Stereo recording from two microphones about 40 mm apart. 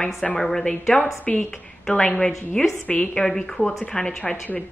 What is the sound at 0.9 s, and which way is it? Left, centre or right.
Speech, left.